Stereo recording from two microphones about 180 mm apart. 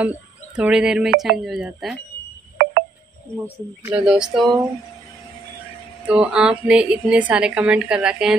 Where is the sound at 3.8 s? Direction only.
5° right (ahead or behind).